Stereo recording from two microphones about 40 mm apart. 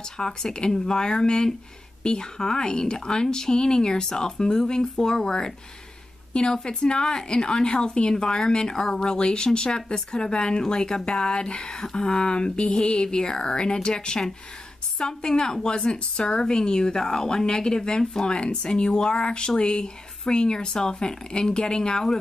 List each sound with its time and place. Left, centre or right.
0.0 s a woman's voice: centre